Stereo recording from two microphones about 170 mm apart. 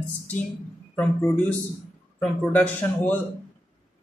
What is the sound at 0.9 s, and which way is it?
Speech, 5° left (ahead or behind).